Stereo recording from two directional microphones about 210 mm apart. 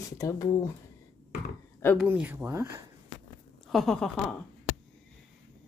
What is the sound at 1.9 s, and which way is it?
Speech, 5° right (ahead or behind).